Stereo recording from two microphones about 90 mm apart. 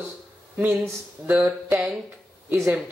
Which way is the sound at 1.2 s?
15° right (ahead or behind).